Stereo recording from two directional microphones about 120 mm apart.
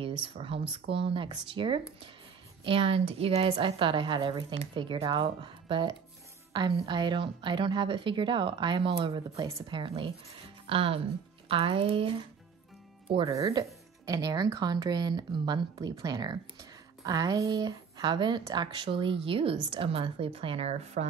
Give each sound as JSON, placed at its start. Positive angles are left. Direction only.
{"t": 0.0, "sound": "a woman's voice", "side_deg": -50}
{"t": 13.3, "sound": "a woman's voice", "side_deg": -30}